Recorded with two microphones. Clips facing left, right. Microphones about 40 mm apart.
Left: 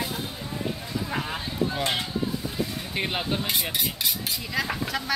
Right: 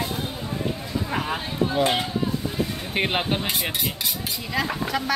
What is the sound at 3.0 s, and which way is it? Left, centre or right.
Speech, right.